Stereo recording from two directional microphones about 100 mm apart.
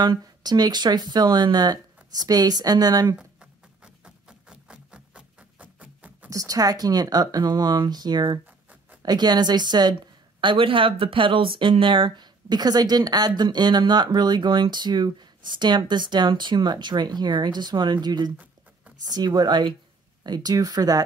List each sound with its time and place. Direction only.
0.0 s speech: 45° right (ahead or behind)
3.2 s a sound: 10° right (ahead or behind)
6.3 s speech: 35° right (ahead or behind)
10.4 s speech: 60° right (ahead or behind); by 21.0 s 40° right (ahead or behind)